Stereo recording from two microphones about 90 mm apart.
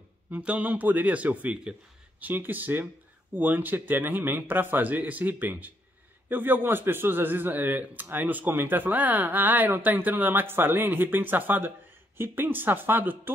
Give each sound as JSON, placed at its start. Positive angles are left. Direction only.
{"t": 0.3, "sound": "speech", "side_deg": -15}
{"t": 2.2, "sound": "a man's voice", "side_deg": -20}